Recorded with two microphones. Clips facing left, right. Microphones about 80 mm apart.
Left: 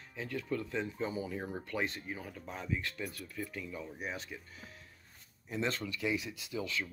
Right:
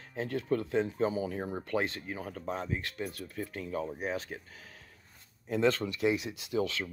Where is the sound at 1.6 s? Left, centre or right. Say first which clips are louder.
Right 6 dB; right.